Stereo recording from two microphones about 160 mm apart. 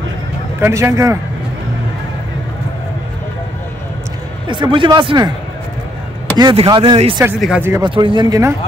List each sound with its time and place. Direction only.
0.6 s a man's voice: 15° right (ahead or behind)
4.5 s speech: 30° right (ahead or behind)
6.3 s speech: 30° right (ahead or behind)
7.2 s a man's voice: 5° right (ahead or behind)
7.8 s speech: 30° right (ahead or behind)